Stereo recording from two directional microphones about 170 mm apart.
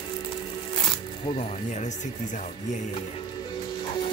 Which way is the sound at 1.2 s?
35° left (ahead or behind).